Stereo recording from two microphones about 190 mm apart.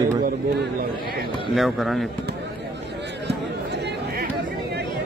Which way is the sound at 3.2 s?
60° right (ahead or behind).